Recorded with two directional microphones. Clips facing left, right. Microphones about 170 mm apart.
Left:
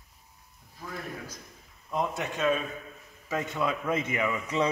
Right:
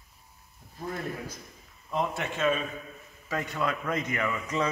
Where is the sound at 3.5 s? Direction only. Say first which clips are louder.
Left 1 dB; 5° left (ahead or behind).